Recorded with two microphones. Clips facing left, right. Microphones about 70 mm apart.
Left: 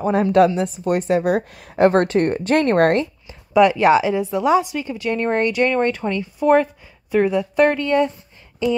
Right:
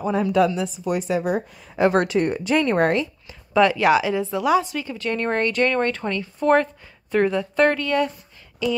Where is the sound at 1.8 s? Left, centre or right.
Left.